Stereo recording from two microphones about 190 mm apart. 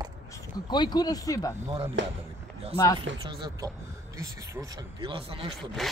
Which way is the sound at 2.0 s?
70° right (ahead or behind).